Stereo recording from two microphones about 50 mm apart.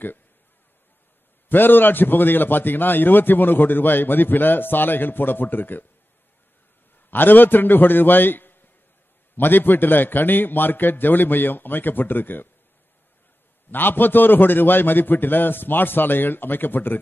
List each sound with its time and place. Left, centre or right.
1.5 s a man's voice: left
7.1 s a man's voice: left
13.7 s a man's voice: left